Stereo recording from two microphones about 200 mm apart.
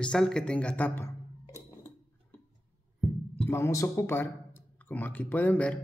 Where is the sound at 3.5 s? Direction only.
15° left (ahead or behind).